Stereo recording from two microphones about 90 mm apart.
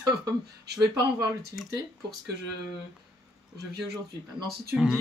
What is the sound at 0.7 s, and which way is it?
Speech, 50° right (ahead or behind).